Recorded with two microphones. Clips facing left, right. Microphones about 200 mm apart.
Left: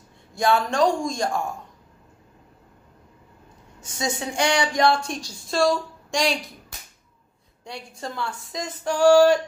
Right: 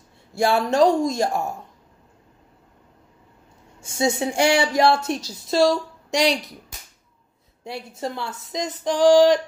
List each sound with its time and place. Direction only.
0.3 s speech: 25° right (ahead or behind)
3.8 s speech: 25° right (ahead or behind)
6.2 s speech: centre (ahead or behind)
7.6 s speech: 25° right (ahead or behind)